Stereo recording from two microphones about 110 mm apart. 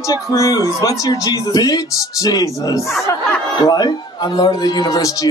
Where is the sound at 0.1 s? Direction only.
30° left (ahead or behind).